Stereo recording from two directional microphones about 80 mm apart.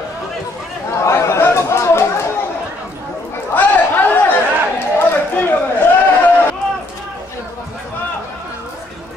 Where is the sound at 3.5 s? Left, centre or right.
Left.